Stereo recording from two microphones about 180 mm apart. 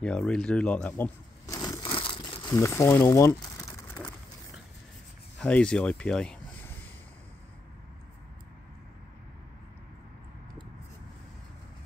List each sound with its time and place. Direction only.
0.0 s crumpling: 5° left (ahead or behind); by 2.4 s 30° left (ahead or behind)
2.5 s speech: 15° left (ahead or behind)
5.4 s speech: 5° left (ahead or behind)